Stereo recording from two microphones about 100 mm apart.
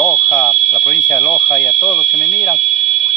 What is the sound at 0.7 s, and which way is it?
Speech, 30° left (ahead or behind).